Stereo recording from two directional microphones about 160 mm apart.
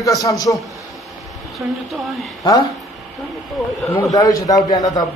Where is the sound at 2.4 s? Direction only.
25° left (ahead or behind).